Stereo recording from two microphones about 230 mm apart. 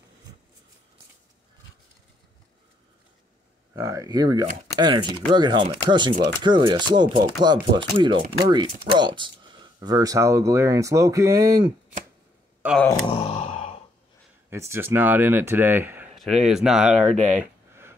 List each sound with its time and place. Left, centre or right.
3.7 s speech: centre
12.6 s speech: centre
13.0 s sigh: left
14.5 s speech: centre
17.4 s a sound: centre